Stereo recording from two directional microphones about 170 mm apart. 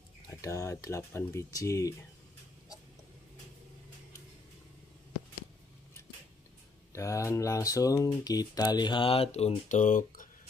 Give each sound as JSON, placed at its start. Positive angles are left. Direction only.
{"t": 0.4, "sound": "speech", "side_deg": 20}
{"t": 6.9, "sound": "speech", "side_deg": 20}